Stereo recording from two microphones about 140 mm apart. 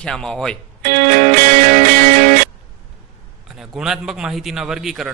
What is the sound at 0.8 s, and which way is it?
Music, 75° right (ahead or behind).